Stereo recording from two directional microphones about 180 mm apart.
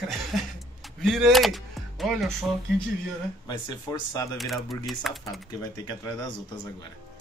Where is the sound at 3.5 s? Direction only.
20° left (ahead or behind).